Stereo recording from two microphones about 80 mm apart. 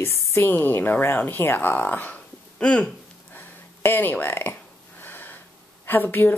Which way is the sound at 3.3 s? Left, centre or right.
Left.